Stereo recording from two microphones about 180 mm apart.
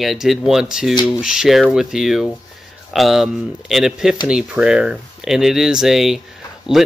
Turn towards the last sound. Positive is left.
turn(degrees=0)  # may be behind; listen again after turning